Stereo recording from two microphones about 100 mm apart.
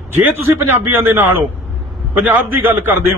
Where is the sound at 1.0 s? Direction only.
25° right (ahead or behind).